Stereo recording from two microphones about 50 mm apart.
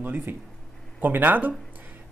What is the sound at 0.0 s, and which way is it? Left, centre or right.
Speech, right.